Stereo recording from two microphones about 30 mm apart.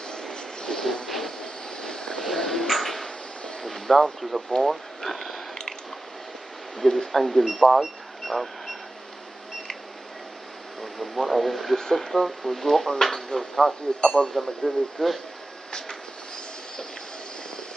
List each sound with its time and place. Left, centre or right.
0.1 s vehicle: left
1.0 s vehicle: centre
1.4 s vehicle: left
2.2 s a sound: centre
4.2 s speech: centre
4.6 s a sound: centre
6.8 s speech: centre
7.1 s speech: centre
7.7 s a sound: centre
10.8 s speech: centre